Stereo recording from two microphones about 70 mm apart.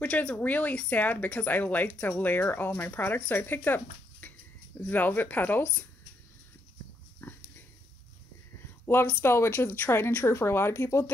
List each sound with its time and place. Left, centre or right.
0.0 s speech: centre
7.2 s pig: left
8.9 s speech: left